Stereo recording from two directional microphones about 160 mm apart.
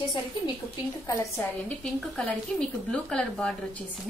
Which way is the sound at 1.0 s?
20° left (ahead or behind).